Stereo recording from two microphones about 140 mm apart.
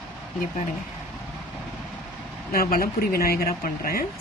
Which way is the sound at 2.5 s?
90° left.